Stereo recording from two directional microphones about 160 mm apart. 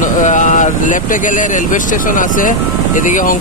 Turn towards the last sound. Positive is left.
turn(degrees=55)  # may be behind; listen again after turning